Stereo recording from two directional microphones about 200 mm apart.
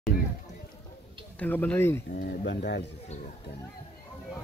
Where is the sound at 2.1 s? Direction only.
55° left (ahead or behind).